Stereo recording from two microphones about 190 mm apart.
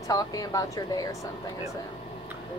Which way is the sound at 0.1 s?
20° left (ahead or behind).